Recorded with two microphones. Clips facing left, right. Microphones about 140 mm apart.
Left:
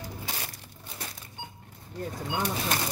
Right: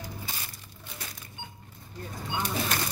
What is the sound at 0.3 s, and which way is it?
Crushing, 75° left (ahead or behind).